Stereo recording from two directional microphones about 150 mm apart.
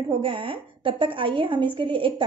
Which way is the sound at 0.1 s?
35° right (ahead or behind).